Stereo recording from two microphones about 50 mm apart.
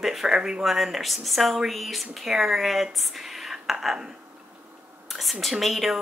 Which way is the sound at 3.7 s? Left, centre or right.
Centre.